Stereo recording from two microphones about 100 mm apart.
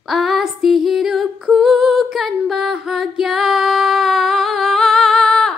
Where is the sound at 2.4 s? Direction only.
5° right (ahead or behind).